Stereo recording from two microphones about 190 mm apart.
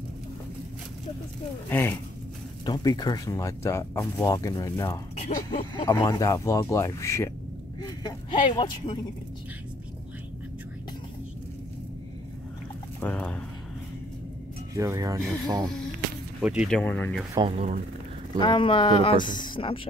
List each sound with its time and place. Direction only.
1.7 s speech: 10° left (ahead or behind)
5.1 s speech: 35° left (ahead or behind)
13.0 s speech: 5° left (ahead or behind)
14.7 s speech: 15° right (ahead or behind)
16.3 s speech: 5° right (ahead or behind)
16.7 s speech: 10° left (ahead or behind)
17.5 s speech: 35° right (ahead or behind)
18.4 s speech: 25° left (ahead or behind)